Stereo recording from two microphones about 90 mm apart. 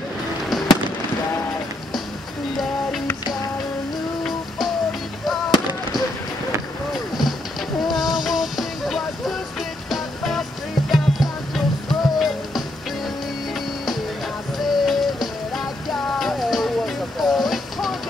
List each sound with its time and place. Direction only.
0.5 s fireworks: centre (ahead or behind)
5.5 s fireworks: 55° left (ahead or behind)
7.9 s music: centre (ahead or behind)
14.6 s music: centre (ahead or behind)